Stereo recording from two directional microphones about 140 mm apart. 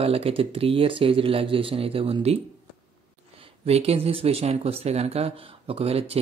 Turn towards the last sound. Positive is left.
turn(degrees=-45)  # may be behind; listen again after turning